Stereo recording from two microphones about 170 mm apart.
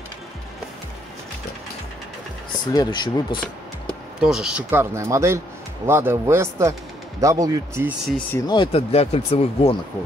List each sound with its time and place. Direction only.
2.7 s speech: 25° left (ahead or behind)
4.2 s speech: 5° right (ahead or behind)
8.3 s speech: 20° left (ahead or behind)